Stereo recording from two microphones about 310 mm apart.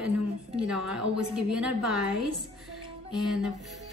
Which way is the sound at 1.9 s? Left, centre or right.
Right.